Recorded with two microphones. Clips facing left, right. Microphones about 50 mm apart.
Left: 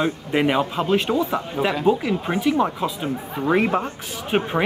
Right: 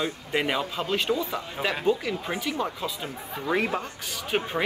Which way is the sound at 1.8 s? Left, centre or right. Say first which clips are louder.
Left 5 dB; centre.